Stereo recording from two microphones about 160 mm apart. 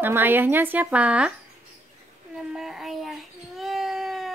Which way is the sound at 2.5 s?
Centre (ahead or behind).